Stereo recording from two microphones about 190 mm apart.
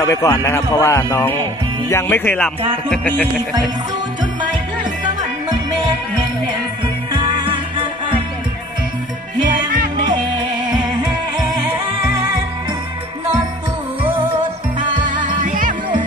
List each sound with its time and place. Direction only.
0.0 s speech: 15° left (ahead or behind)
7.2 s music: 25° right (ahead or behind)
9.4 s jingle bell: 45° right (ahead or behind)
10.0 s music: 25° right (ahead or behind)
15.4 s music: 45° right (ahead or behind)